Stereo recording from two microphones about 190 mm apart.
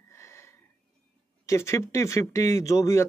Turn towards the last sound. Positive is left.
turn(degrees=15)  # may be behind; listen again after turning